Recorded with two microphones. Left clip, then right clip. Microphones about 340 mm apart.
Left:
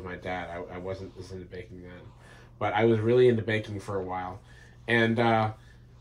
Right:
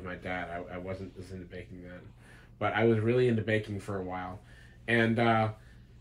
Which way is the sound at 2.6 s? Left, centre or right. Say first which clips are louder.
Left 3 dB; centre.